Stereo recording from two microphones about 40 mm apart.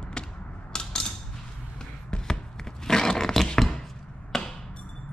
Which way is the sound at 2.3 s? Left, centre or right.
Centre.